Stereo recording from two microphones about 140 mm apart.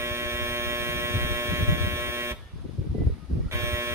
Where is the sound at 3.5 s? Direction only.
20° right (ahead or behind).